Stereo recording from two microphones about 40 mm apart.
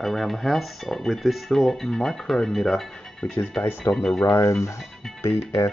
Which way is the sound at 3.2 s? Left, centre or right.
Left.